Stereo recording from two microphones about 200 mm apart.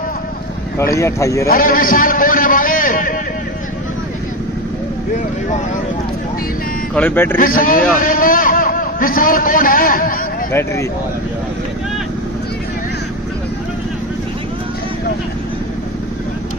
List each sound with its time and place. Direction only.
0.7 s speech: 15° left (ahead or behind)
1.5 s a man's voice: 45° left (ahead or behind)
7.0 s speech: 10° left (ahead or behind)
7.3 s a man's voice: 45° left (ahead or behind)
10.5 s speech: 15° left (ahead or behind)